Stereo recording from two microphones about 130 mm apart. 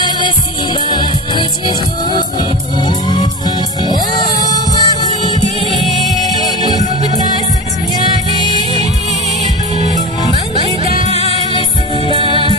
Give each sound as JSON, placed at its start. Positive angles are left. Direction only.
{"t": 3.1, "sound": "music", "side_deg": 35}
{"t": 5.7, "sound": "music", "side_deg": 0}
{"t": 6.2, "sound": "music", "side_deg": 30}
{"t": 10.6, "sound": "music", "side_deg": -45}
{"t": 11.1, "sound": "music", "side_deg": 50}
{"t": 12.1, "sound": "music", "side_deg": -40}